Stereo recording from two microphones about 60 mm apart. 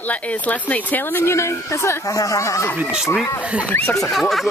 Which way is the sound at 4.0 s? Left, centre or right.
Centre.